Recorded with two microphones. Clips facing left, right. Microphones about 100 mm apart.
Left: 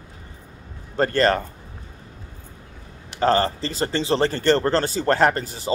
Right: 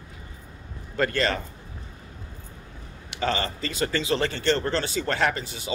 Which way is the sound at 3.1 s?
40° left (ahead or behind).